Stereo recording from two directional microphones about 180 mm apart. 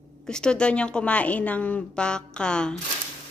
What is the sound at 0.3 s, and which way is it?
Speech, 5° left (ahead or behind).